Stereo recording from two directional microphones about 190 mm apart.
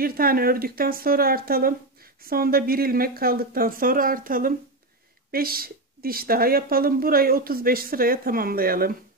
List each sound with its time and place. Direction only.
0.0 s a woman's voice: 50° right (ahead or behind)